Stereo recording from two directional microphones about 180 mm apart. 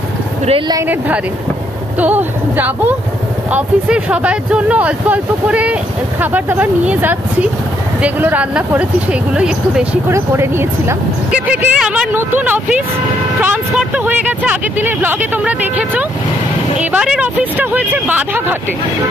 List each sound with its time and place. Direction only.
0.5 s speech: 25° right (ahead or behind)
0.8 s speech: 10° right (ahead or behind)